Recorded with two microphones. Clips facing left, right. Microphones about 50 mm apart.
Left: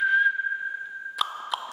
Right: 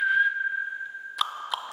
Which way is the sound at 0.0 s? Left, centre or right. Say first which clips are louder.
Left 1 dB; centre.